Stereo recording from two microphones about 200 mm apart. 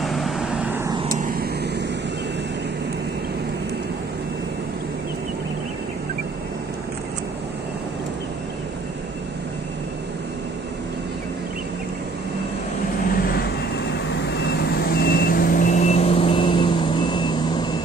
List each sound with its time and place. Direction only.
0.0 s vehicle: centre (ahead or behind)
1.0 s vehicle: 45° right (ahead or behind)
14.3 s reversing beeps: 55° left (ahead or behind); by 17.6 s 20° left (ahead or behind)